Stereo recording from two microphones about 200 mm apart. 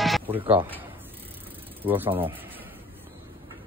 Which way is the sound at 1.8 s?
10° right (ahead or behind).